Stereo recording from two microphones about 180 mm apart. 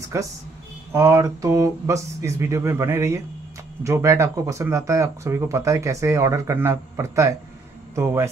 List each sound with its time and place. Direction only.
0.1 s a man's voice: 15° right (ahead or behind)